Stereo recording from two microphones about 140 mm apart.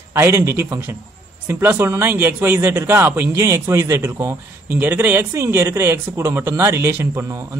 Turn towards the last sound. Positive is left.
turn(degrees=-15)  # may be behind; listen again after turning